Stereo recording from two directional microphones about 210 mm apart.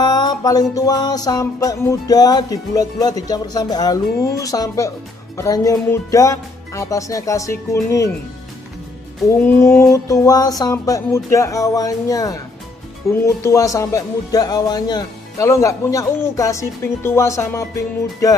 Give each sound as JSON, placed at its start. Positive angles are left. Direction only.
{"t": 0.0, "sound": "music", "side_deg": 20}
{"t": 9.4, "sound": "music", "side_deg": 10}